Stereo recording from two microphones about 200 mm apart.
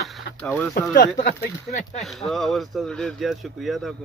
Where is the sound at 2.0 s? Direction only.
Centre (ahead or behind).